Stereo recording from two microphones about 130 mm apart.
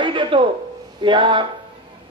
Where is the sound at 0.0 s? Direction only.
40° right (ahead or behind).